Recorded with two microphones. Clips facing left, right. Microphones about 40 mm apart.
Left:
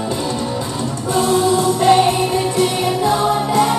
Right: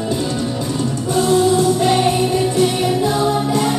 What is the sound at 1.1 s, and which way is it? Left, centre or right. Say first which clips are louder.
Music: right 1 dB; left.